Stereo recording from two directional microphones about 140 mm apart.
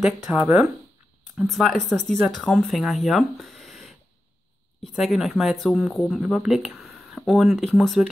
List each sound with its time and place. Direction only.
0.0 s speech: centre (ahead or behind)